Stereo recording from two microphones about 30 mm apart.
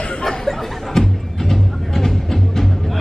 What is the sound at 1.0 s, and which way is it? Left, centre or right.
Music, centre.